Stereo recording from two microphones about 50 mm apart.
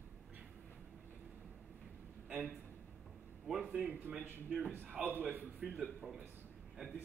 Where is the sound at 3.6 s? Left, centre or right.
Right.